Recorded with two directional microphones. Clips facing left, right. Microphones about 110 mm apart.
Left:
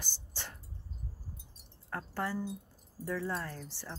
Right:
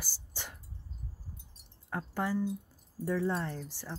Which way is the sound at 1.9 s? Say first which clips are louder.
Right 3 dB; 15° right (ahead or behind).